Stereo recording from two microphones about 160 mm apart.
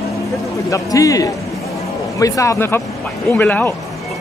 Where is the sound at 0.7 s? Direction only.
20° left (ahead or behind).